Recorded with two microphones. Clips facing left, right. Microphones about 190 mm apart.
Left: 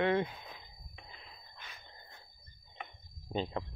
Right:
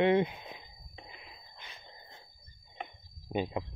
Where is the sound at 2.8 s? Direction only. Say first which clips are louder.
Right 4 dB; 15° right (ahead or behind).